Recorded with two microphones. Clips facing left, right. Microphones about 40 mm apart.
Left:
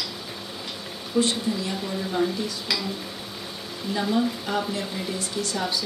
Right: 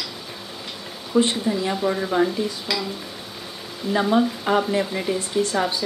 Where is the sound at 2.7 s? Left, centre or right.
Centre.